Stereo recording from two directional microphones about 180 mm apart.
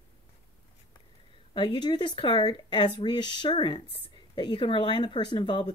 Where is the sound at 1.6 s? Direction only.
25° left (ahead or behind).